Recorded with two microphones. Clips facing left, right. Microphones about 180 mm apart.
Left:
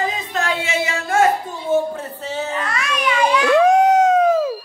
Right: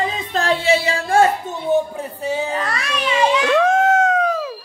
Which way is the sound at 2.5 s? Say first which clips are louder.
Even; 35° right (ahead or behind).